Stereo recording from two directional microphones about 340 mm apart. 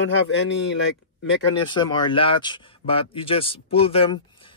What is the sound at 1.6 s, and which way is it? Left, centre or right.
Speech, centre.